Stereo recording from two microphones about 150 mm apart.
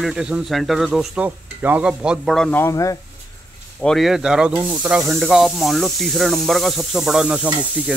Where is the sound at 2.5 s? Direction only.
20° left (ahead or behind).